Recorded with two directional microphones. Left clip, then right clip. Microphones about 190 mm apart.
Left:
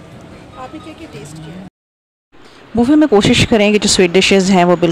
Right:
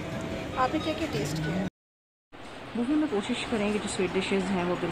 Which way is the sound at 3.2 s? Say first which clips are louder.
Left 18 dB; 50° left (ahead or behind).